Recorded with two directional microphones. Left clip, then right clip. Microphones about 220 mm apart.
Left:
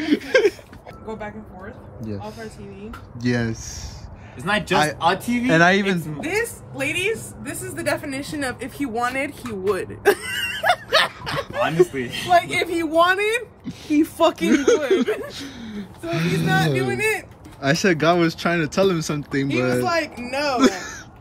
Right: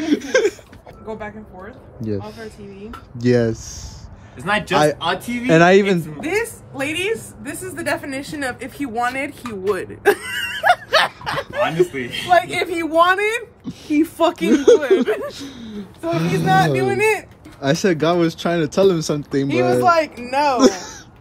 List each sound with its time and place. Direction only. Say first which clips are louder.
0.0 s a sound: right 1 dB; 5° right (ahead or behind)
2.2 s speech: right 1 dB; 40° right (ahead or behind)
3.2 s speech: right 7 dB; 30° right (ahead or behind)
4.4 s a man's voice: right 2 dB; centre (ahead or behind)
4.9 s speech: left 2 dB; 25° left (ahead or behind)
5.6 s speech: right 5 dB; 30° right (ahead or behind)
6.2 s a woman's voice: right 1 dB; 15° right (ahead or behind)
9.5 s a sound: right 3 dB; 5° right (ahead or behind)
11.6 s a man's voice: even; 10° left (ahead or behind)
12.3 s a woman's voice: right 2 dB; 15° right (ahead or behind)
16.4 s speech: right 6 dB; 25° right (ahead or behind)
17.6 s a woman's voice: right 1 dB; 5° right (ahead or behind)
19.7 s a woman's voice: right 6 dB; 25° right (ahead or behind); by 21.0 s 10° right (ahead or behind)